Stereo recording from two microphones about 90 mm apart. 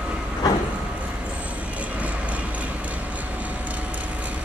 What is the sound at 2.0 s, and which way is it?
Vehicle, 15° right (ahead or behind).